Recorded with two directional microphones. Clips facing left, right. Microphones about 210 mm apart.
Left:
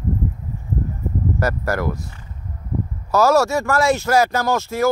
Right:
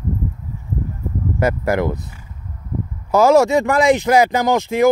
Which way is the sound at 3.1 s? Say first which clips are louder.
Right 4 dB; 15° right (ahead or behind).